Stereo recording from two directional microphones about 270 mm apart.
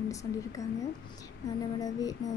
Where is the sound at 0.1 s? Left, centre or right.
Centre.